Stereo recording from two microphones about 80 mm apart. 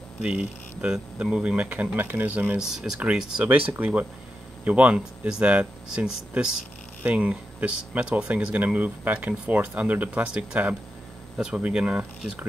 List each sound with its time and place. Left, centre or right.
0.2 s speech: centre
2.6 s speech: centre
3.7 s speech: right